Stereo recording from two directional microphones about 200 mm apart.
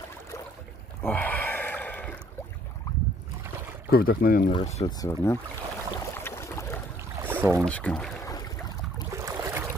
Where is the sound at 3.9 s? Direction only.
50° left (ahead or behind).